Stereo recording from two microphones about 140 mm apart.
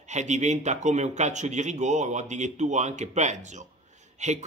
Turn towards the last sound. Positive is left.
turn(degrees=-55)  # may be behind; listen again after turning